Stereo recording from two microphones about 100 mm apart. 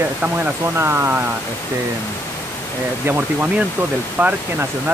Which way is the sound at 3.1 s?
15° right (ahead or behind).